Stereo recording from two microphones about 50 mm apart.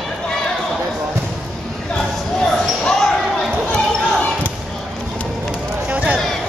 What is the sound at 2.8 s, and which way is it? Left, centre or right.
Basketball bounce, centre.